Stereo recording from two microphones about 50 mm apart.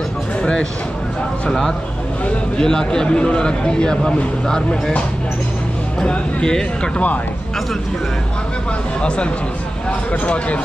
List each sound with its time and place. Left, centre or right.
0.4 s a sound: centre
2.2 s speech: centre
6.0 s speech: centre
9.0 s speech: left